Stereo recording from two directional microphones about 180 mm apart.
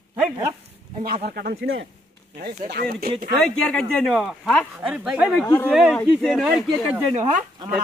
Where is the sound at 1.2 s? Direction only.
60° right (ahead or behind).